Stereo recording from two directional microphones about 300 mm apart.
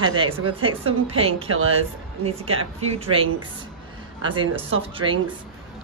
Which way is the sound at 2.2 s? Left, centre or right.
Centre.